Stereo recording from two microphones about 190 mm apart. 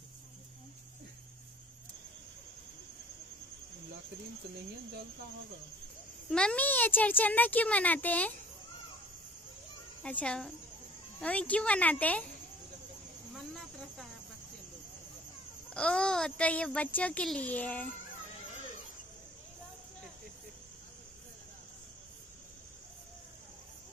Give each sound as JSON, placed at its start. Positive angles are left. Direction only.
{"t": 6.3, "sound": "a child's voice", "side_deg": 5}
{"t": 10.0, "sound": "a child's voice", "side_deg": 5}
{"t": 15.7, "sound": "a child's voice", "side_deg": 5}